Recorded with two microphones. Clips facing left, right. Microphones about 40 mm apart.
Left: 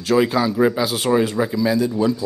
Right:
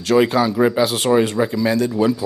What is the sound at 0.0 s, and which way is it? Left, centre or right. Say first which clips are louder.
Speech: right 2 dB; centre.